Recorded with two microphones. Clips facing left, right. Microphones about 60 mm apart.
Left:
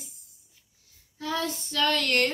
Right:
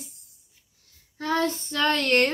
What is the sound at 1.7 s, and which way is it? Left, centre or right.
Female singing, right.